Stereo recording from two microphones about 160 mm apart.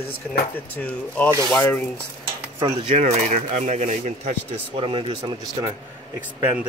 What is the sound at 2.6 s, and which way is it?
Speech, 40° right (ahead or behind).